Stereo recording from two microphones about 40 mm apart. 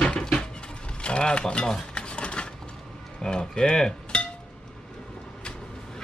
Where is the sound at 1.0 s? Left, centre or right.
Left.